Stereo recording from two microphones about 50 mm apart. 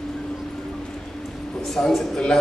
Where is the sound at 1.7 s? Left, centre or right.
Centre.